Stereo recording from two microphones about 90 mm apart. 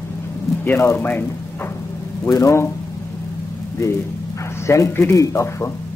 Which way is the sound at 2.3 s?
35° left (ahead or behind).